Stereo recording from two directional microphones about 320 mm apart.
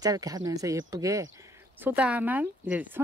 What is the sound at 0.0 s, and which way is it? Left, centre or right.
Speech, centre.